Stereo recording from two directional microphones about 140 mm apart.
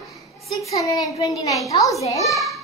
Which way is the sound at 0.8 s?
25° left (ahead or behind).